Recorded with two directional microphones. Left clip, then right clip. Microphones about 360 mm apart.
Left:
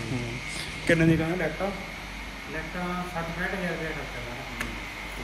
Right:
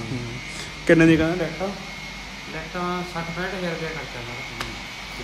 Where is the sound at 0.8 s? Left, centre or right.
Centre.